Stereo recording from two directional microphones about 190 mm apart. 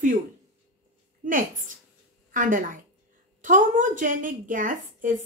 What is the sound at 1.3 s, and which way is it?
A woman's voice, 45° right (ahead or behind).